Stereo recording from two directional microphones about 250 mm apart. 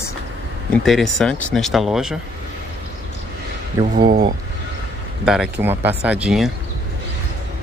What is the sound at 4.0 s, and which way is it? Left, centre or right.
Speech, right.